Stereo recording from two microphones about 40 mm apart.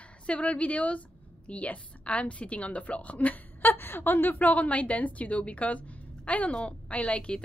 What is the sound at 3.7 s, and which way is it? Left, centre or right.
Speech, left.